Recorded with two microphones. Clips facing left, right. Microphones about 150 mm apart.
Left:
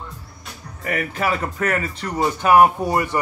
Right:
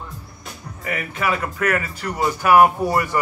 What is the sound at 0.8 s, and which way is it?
Speech, 40° left (ahead or behind).